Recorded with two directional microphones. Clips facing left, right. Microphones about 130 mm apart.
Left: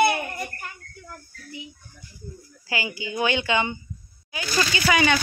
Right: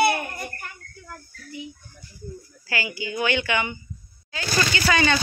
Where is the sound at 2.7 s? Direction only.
20° left (ahead or behind).